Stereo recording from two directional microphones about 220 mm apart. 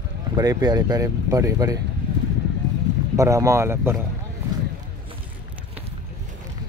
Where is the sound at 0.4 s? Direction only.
20° right (ahead or behind).